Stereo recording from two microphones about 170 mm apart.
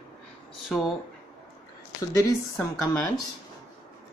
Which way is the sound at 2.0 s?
20° left (ahead or behind).